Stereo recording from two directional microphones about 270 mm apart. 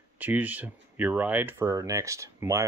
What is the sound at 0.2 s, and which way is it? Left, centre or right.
Speech, centre.